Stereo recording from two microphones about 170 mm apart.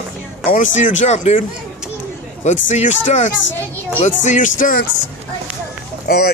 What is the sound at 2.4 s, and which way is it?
Speech, 45° left (ahead or behind).